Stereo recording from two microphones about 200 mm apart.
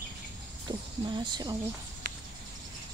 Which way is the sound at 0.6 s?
25° right (ahead or behind).